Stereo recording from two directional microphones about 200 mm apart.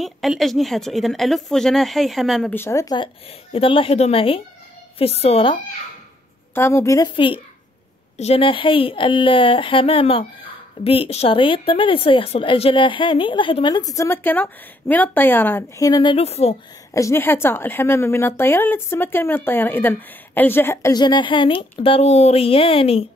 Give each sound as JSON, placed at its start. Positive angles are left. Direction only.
{"t": 0.0, "sound": "speech", "side_deg": 0}
{"t": 2.5, "sound": "speech", "side_deg": 15}
{"t": 6.5, "sound": "a woman's voice", "side_deg": 10}
{"t": 16.9, "sound": "a woman's voice", "side_deg": 15}